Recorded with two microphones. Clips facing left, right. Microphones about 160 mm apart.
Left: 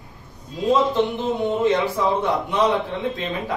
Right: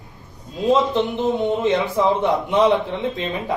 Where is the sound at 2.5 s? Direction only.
20° right (ahead or behind).